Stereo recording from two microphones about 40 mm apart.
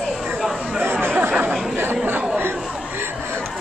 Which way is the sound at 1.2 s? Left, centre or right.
Right.